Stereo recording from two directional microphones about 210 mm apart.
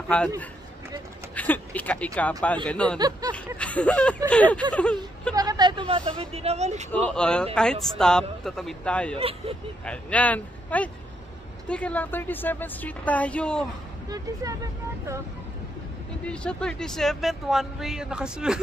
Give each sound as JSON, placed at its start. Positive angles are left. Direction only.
{"t": 1.3, "sound": "a sound", "side_deg": 5}
{"t": 2.1, "sound": "a woman's voice", "side_deg": 5}
{"t": 3.0, "sound": "speech", "side_deg": -20}
{"t": 3.5, "sound": "a woman's voice", "side_deg": 5}
{"t": 5.3, "sound": "speech", "side_deg": -15}
{"t": 6.9, "sound": "a woman's voice", "side_deg": 5}
{"t": 14.0, "sound": "speech", "side_deg": -15}
{"t": 16.3, "sound": "speech", "side_deg": 5}